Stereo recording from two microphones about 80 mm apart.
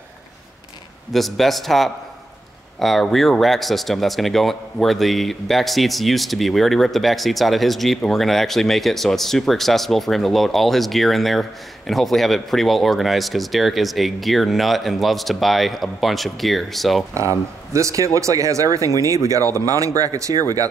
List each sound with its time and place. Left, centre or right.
1.1 s speech: centre
17.1 s speech: right